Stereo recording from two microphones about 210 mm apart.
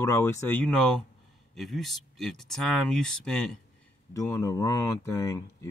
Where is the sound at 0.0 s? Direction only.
10° left (ahead or behind).